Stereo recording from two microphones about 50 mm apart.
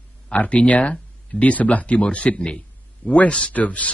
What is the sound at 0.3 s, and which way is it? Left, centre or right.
Speech, left.